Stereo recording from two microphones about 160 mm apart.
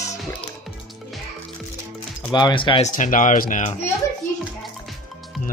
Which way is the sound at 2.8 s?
55° left (ahead or behind).